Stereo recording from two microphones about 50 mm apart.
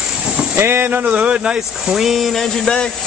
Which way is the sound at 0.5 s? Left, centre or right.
Right.